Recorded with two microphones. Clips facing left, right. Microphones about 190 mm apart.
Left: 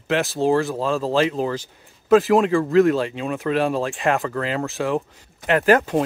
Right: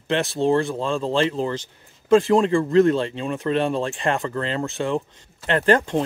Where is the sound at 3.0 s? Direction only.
5° left (ahead or behind).